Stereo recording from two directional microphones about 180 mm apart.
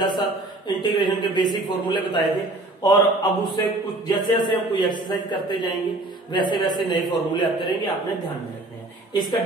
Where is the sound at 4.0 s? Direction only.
25° left (ahead or behind).